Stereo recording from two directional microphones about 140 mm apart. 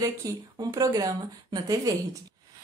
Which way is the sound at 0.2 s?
25° right (ahead or behind).